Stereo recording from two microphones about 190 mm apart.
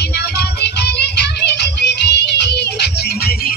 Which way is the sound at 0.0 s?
60° left (ahead or behind).